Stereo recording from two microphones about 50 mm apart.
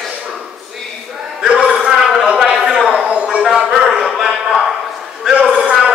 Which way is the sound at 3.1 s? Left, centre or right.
Right.